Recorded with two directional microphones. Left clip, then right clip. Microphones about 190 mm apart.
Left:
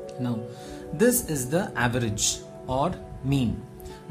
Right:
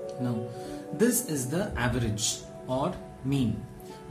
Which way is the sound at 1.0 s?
45° left (ahead or behind).